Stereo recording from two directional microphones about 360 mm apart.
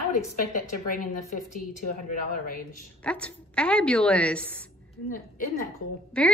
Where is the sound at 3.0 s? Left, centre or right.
Centre.